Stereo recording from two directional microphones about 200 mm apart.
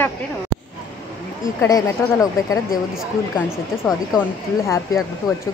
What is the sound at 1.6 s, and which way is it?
Speech, 15° left (ahead or behind).